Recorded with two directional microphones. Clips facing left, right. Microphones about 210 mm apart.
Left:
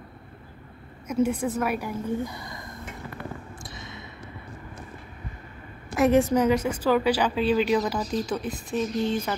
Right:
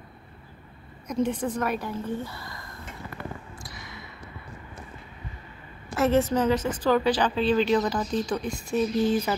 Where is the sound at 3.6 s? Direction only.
25° left (ahead or behind).